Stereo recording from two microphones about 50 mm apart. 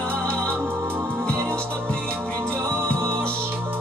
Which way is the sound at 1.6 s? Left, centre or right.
Left.